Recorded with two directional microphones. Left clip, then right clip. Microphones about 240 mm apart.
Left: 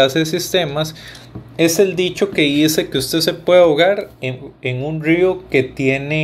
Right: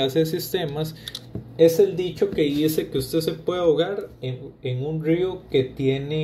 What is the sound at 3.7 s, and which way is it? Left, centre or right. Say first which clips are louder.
Speech: left 7 dB; left.